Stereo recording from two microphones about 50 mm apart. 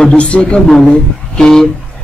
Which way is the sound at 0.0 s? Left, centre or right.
Left.